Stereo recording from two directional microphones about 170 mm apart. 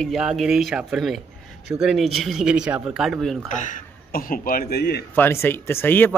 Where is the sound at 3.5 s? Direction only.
45° left (ahead or behind); by 5.1 s 70° left (ahead or behind).